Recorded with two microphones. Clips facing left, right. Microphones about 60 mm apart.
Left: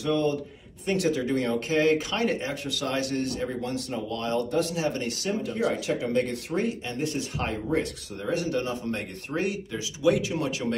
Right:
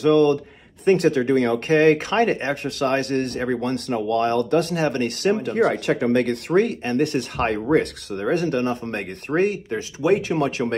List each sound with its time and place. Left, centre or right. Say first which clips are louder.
0.0 s speech: right 9 dB; right